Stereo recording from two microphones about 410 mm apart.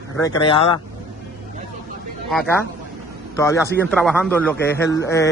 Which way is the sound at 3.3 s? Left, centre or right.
Centre.